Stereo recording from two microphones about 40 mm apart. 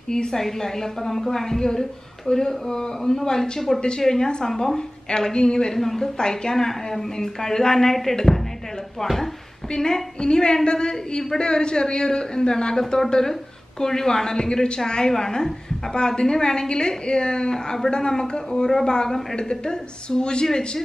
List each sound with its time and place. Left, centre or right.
0.1 s a woman's voice: centre
5.8 s a woman's voice: centre
9.7 s a woman's voice: centre